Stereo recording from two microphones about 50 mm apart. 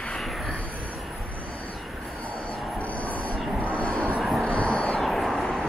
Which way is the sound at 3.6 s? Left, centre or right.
Left.